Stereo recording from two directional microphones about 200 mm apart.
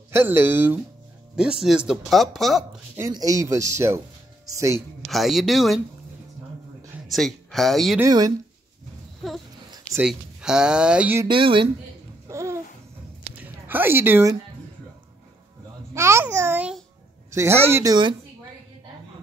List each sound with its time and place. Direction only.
0.1 s speech: 10° right (ahead or behind)
3.0 s speech: 20° right (ahead or behind)
5.1 s speech: centre (ahead or behind)
7.1 s speech: centre (ahead or behind)
8.0 s speech: 20° right (ahead or behind)
10.0 s speech: 5° right (ahead or behind)
11.2 s speech: 25° right (ahead or behind)
12.3 s babbling: 15° right (ahead or behind)
13.4 s music: 10° right (ahead or behind)
15.9 s babbling: 15° right (ahead or behind)
17.3 s speech: 15° right (ahead or behind)